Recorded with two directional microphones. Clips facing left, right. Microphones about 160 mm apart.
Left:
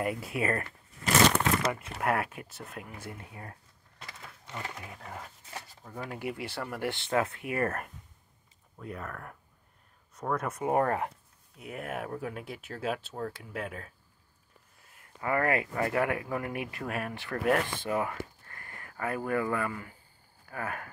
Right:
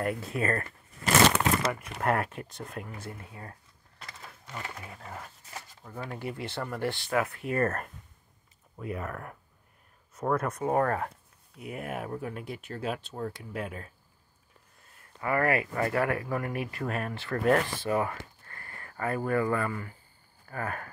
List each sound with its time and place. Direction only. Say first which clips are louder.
0.0 s speech: right 1 dB; 10° left (ahead or behind)
2.0 s speech: right 4 dB; 5° left (ahead or behind)
3.1 s speech: right 1 dB; 20° left (ahead or behind)
4.5 s speech: even; 20° left (ahead or behind)
5.9 s speech: right 1 dB; centre (ahead or behind)
6.1 s speech: right 1 dB; 15° left (ahead or behind)
7.4 s speech: right 2 dB; 15° left (ahead or behind)
8.7 s speech: right 4 dB; 10° right (ahead or behind); by 10.8 s 10° left (ahead or behind)
10.8 s speech: even; 20° left (ahead or behind)
11.5 s speech: right 1 dB; centre (ahead or behind)
15.1 s speech: right 1 dB; 20° left (ahead or behind)